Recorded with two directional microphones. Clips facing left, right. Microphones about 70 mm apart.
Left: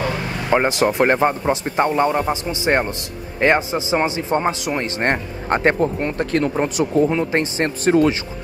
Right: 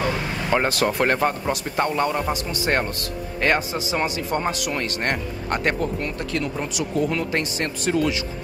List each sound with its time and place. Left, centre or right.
0.0 s speech: centre; by 7.1 s left
7.1 s speech: left